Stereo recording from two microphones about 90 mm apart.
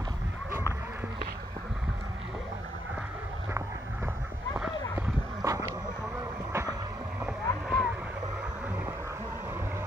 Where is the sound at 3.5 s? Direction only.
35° right (ahead or behind).